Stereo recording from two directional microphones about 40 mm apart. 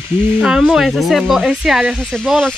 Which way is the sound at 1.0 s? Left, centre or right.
Centre.